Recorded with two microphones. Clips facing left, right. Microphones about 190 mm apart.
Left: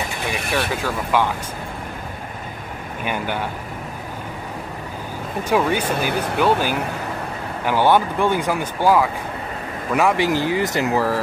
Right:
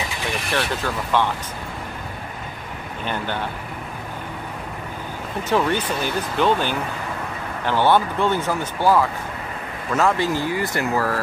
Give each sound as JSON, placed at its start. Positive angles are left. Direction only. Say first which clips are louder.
{"t": 0.3, "sound": "speech", "louder": "left 1 dB", "side_deg": 5}
{"t": 3.0, "sound": "speech", "louder": "left 2 dB", "side_deg": 10}
{"t": 5.4, "sound": "speech", "louder": "left 1 dB", "side_deg": 10}